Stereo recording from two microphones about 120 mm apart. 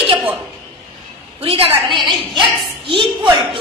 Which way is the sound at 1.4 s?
50° right (ahead or behind).